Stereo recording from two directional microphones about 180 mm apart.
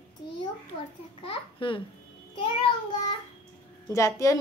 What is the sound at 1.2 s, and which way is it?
Speech, 30° left (ahead or behind).